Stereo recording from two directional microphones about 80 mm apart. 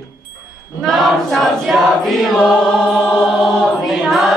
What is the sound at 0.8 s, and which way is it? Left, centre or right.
Choir, centre.